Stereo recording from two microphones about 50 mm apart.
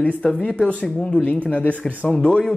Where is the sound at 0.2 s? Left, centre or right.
Centre.